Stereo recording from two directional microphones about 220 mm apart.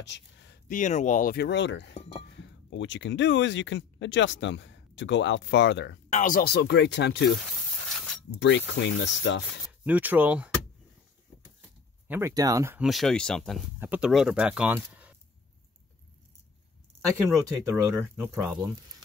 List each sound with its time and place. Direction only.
0.0 s a sound: 50° left (ahead or behind)
0.7 s speech: 35° left (ahead or behind); by 5.9 s 55° left (ahead or behind)
6.1 s speech: 40° left (ahead or behind)
8.4 s speech: 50° left (ahead or behind)
9.7 s speech: 5° right (ahead or behind)
12.1 s speech: 10° right (ahead or behind)
12.8 s speech: centre (ahead or behind)
17.1 s speech: 15° right (ahead or behind)